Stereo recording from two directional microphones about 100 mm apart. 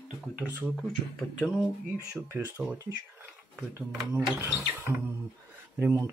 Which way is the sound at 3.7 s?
20° right (ahead or behind).